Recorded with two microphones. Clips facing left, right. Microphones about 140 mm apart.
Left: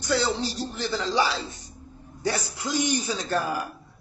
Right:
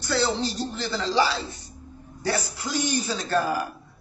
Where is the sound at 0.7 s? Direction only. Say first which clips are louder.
Right 1 dB; 10° left (ahead or behind).